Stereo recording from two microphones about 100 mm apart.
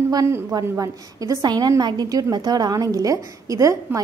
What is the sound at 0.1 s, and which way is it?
A woman's voice, 35° right (ahead or behind).